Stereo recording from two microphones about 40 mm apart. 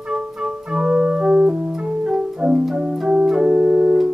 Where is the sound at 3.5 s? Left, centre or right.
Right.